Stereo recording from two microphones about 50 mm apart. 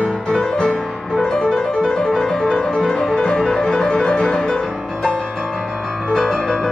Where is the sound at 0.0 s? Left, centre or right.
Centre.